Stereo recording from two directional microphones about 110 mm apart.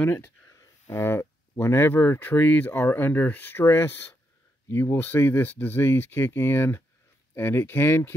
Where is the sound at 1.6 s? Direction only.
20° left (ahead or behind).